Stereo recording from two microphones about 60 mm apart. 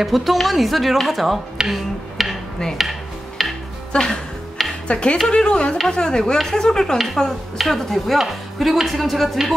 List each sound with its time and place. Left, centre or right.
0.0 s speech: centre
1.6 s music: centre
3.9 s music: centre
4.8 s speech: centre